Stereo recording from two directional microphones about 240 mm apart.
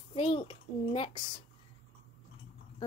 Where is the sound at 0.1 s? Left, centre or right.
Left.